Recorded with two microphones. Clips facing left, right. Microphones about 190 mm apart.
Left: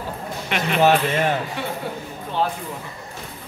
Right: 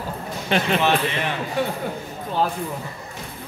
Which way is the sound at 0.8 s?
45° left (ahead or behind).